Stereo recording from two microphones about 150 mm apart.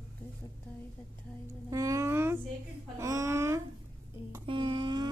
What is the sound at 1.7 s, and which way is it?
Speech, 20° right (ahead or behind).